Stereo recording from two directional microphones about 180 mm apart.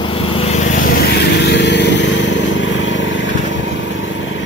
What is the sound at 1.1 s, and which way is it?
Vehicle, 70° left (ahead or behind).